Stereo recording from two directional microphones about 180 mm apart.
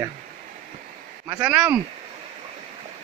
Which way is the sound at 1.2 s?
10° right (ahead or behind).